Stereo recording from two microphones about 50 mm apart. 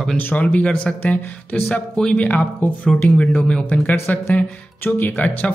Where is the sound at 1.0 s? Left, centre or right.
Left.